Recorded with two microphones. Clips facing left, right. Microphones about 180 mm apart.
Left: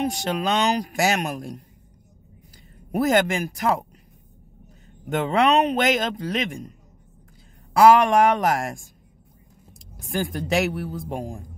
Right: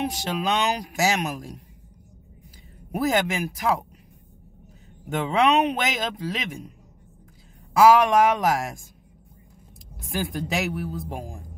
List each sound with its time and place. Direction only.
0.1 s a man's voice: centre (ahead or behind)
3.1 s a man's voice: centre (ahead or behind)
5.1 s a man's voice: centre (ahead or behind)
7.8 s a man's voice: 5° right (ahead or behind)
9.9 s a man's voice: centre (ahead or behind)